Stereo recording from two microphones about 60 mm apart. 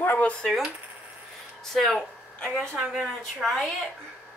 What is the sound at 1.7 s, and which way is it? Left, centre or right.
Speech, centre.